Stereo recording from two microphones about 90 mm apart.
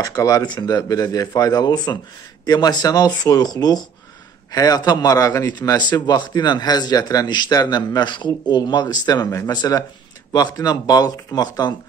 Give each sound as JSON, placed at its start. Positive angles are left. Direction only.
{"t": 0.0, "sound": "a man's voice", "side_deg": 40}
{"t": 5.9, "sound": "a man's voice", "side_deg": 55}